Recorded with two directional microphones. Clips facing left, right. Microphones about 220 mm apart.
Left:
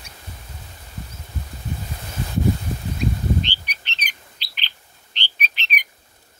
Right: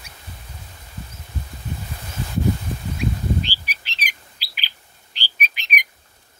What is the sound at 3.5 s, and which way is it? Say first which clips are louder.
Bird: even; 5° right (ahead or behind).